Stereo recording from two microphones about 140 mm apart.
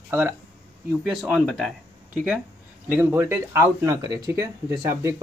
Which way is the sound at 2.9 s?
15° right (ahead or behind).